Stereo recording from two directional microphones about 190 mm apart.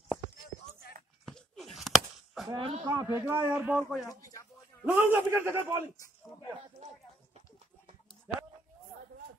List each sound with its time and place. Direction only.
1.2 s a sound: 5° left (ahead or behind)
2.5 s speech: 25° right (ahead or behind); by 4.0 s 10° right (ahead or behind)
4.1 s speech: 20° left (ahead or behind)
4.9 s speech: 10° right (ahead or behind)